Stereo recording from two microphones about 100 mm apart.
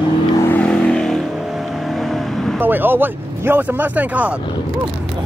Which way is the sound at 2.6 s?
20° right (ahead or behind).